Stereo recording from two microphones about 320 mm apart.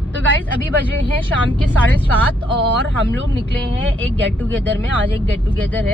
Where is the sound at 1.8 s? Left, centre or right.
Centre.